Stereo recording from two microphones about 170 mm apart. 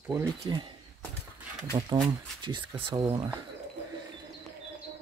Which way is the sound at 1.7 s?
25° right (ahead or behind).